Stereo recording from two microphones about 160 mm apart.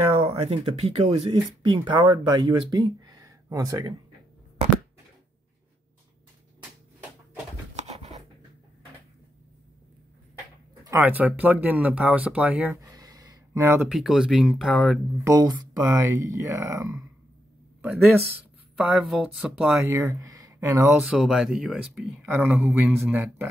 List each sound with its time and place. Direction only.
0.0 s speech: 35° right (ahead or behind); by 3.9 s 20° right (ahead or behind)
7.7 s a sound: 45° right (ahead or behind)
10.7 s speech: 20° right (ahead or behind)
12.9 s a sound: 25° right (ahead or behind)
13.9 s speech: 5° right (ahead or behind)
15.2 s speech: 25° right (ahead or behind)
18.8 s speech: 10° right (ahead or behind)
19.9 s speech: 20° right (ahead or behind)
21.0 s speech: 5° right (ahead or behind)